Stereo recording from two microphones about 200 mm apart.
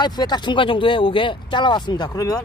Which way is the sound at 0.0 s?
20° left (ahead or behind).